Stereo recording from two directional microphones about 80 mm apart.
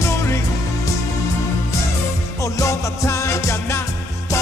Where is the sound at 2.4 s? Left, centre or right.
Left.